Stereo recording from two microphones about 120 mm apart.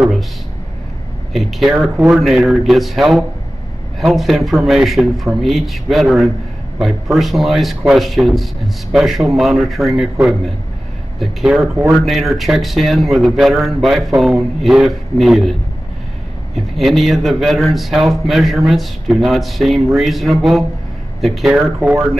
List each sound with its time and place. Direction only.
1.3 s a man's voice: centre (ahead or behind)
16.5 s a man's voice: centre (ahead or behind)
21.7 s speech: 20° right (ahead or behind)